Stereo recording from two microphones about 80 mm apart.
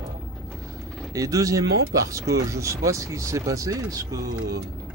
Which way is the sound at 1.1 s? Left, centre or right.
Right.